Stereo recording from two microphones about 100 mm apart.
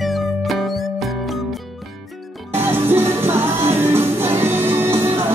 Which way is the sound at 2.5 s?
25° right (ahead or behind).